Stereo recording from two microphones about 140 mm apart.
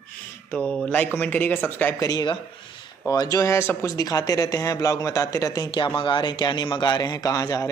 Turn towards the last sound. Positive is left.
turn(degrees=25)  # may be behind; listen again after turning